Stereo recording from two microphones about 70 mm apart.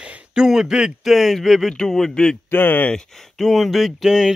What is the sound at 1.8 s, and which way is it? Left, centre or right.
Speech, centre.